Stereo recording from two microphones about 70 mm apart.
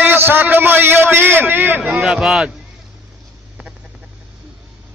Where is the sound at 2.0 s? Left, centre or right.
Centre.